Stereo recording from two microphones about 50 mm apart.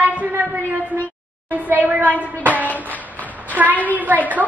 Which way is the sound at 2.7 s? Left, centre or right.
Left.